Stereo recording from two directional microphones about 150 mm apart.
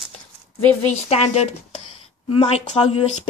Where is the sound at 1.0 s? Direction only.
45° left (ahead or behind).